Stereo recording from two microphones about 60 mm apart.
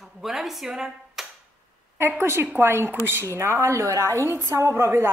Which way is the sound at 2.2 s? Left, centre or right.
Right.